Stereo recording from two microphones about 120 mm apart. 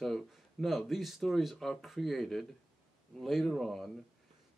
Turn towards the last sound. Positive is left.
turn(degrees=0)  # may be behind; listen again after turning